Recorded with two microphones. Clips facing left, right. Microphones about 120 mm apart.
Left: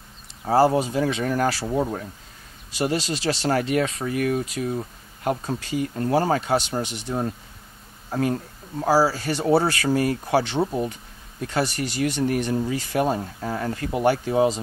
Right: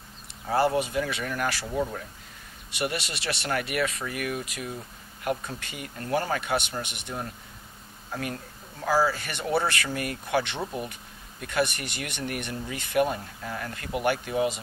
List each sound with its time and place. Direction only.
0.5 s speech: 35° left (ahead or behind)
2.8 s speech: 30° left (ahead or behind)
8.8 s speech: 35° left (ahead or behind)
11.4 s speech: 30° left (ahead or behind)